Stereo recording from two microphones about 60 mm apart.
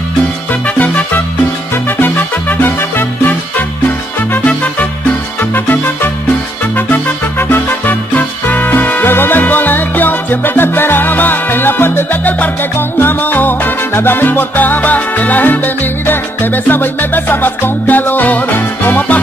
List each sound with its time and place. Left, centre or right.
0.7 s music: left
6.9 s music: left
13.9 s salsa music: left
16.6 s music: left